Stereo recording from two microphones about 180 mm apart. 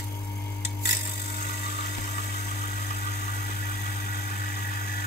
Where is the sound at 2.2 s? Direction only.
55° left (ahead or behind).